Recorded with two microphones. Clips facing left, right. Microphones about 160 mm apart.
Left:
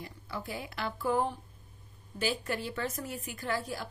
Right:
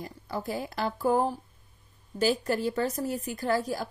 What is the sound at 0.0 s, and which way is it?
A woman's voice, 40° right (ahead or behind).